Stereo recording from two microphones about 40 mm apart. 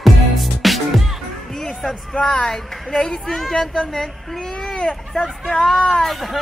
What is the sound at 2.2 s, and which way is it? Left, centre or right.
Speech, left.